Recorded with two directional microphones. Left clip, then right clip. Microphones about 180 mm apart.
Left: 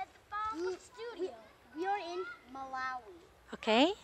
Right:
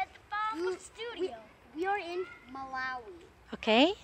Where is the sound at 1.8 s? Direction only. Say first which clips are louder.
Right 3 dB; 15° left (ahead or behind).